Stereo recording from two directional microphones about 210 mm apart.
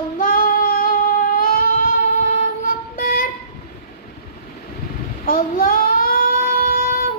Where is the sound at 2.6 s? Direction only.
45° left (ahead or behind).